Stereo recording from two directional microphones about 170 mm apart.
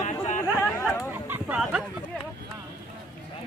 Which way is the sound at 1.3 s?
5° right (ahead or behind).